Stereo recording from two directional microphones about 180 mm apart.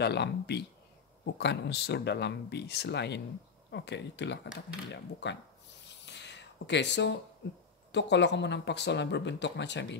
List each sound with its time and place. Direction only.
0.0 s speech: 65° left (ahead or behind)
6.0 s a sound: 75° left (ahead or behind)
7.9 s speech: 75° left (ahead or behind)